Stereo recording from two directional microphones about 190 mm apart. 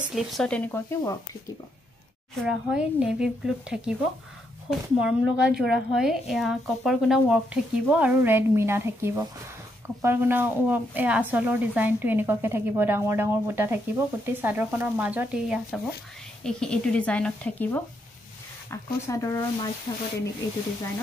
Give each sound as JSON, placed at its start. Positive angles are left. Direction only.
{"t": 0.1, "sound": "speech", "side_deg": 0}
{"t": 2.4, "sound": "a woman's voice", "side_deg": -5}